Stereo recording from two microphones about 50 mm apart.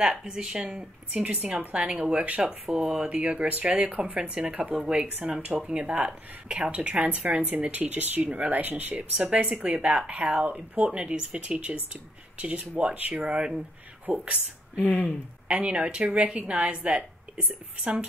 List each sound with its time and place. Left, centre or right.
0.0 s a woman's voice: centre
2.2 s speech: right
2.7 s a woman's voice: centre
7.7 s speech: right
14.0 s speech: right
14.8 s speech: left
15.4 s speech: right